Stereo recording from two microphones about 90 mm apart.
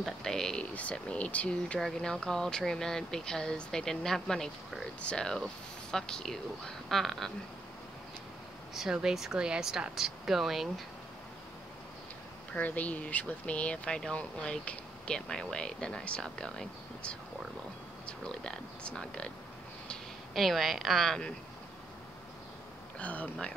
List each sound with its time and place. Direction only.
0.0 s a sound: 5° left (ahead or behind)
0.7 s speech: 15° left (ahead or behind)
8.7 s speech: 5° right (ahead or behind)
12.5 s speech: 15° left (ahead or behind)
19.9 s speech: centre (ahead or behind)
22.9 s speech: 15° left (ahead or behind)